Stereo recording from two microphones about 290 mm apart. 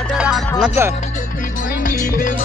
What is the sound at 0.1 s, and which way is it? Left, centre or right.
Music, centre.